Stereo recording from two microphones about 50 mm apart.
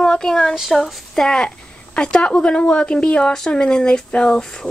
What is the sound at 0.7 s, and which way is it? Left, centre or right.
Speech, centre.